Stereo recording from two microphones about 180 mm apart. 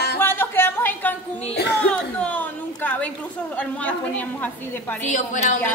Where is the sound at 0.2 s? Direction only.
10° left (ahead or behind).